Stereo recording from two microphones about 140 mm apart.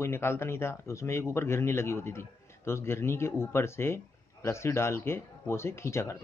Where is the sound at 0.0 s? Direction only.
20° left (ahead or behind).